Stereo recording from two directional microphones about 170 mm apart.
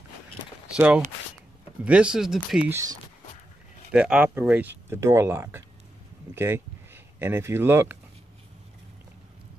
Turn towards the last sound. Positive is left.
turn(degrees=-15)  # may be behind; listen again after turning